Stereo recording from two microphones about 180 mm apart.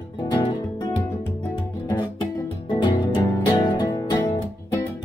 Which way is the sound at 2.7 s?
25° left (ahead or behind).